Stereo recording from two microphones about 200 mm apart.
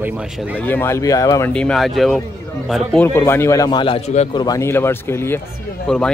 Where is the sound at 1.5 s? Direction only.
5° left (ahead or behind).